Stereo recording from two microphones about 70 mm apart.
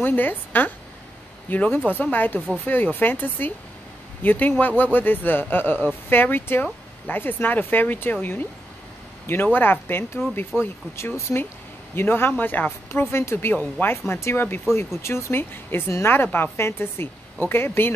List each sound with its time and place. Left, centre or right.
0.0 s speech: left